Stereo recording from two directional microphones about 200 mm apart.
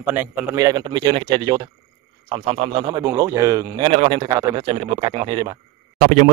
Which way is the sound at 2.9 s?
15° right (ahead or behind).